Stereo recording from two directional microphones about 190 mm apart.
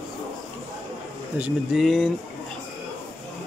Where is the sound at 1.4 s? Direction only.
Centre (ahead or behind).